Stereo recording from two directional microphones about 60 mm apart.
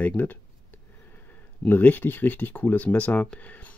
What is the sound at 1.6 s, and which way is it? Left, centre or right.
Speech, left.